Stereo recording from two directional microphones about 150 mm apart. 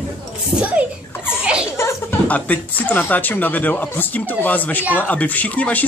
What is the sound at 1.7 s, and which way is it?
A woman's voice, 15° left (ahead or behind).